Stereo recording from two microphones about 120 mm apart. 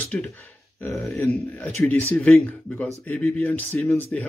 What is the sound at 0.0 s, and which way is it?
Speech, 10° left (ahead or behind).